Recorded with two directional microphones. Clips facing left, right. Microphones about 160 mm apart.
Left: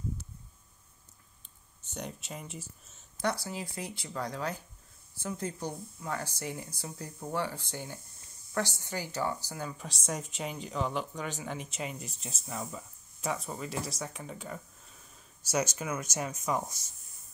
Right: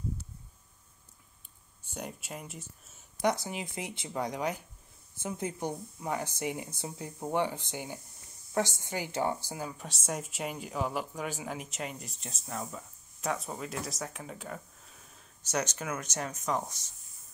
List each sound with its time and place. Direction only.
1.8 s speech: 5° right (ahead or behind)
3.2 s speech: 15° right (ahead or behind)
9.6 s speech: 5° right (ahead or behind)